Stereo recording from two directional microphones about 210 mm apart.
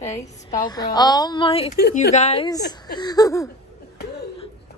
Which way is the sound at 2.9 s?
20° left (ahead or behind).